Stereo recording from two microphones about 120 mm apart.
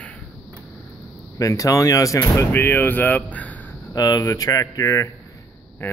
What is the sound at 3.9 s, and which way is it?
Speech, 30° left (ahead or behind).